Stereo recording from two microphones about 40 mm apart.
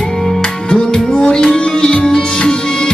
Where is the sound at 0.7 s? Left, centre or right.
Centre.